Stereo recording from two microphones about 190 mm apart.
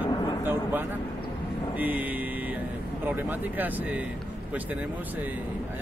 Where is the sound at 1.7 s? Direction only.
10° right (ahead or behind).